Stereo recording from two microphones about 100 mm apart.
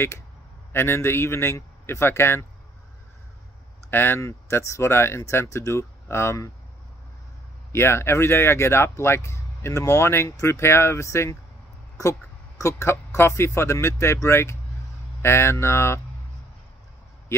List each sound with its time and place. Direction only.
0.7 s speech: 25° left (ahead or behind)
3.9 s speech: 20° left (ahead or behind)
7.7 s speech: 25° left (ahead or behind)